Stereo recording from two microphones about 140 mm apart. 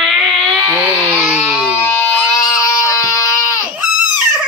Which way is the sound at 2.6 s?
25° left (ahead or behind).